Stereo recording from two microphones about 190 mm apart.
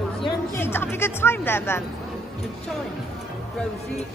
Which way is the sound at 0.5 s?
10° left (ahead or behind).